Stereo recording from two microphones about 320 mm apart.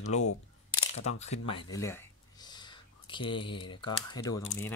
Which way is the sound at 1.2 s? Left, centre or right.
Centre.